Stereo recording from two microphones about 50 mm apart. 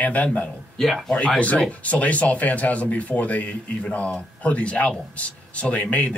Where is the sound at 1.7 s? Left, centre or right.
Left.